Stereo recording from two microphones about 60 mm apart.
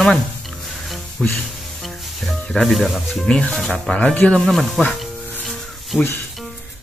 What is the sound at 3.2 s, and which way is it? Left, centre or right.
Speech, centre.